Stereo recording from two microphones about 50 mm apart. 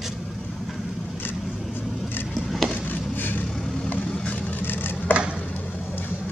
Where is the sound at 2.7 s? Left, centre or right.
Left.